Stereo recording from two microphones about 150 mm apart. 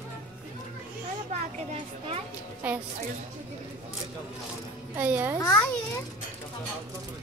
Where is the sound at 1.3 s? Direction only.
45° right (ahead or behind).